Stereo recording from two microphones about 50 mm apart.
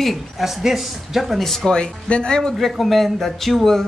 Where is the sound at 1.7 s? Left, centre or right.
Centre.